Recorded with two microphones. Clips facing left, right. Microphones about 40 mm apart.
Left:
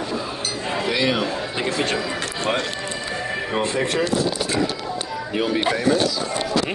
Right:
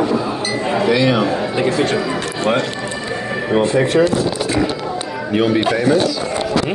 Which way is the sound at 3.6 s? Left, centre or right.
Right.